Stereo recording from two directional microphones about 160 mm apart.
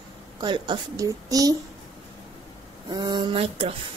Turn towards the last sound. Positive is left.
turn(degrees=-35)  # may be behind; listen again after turning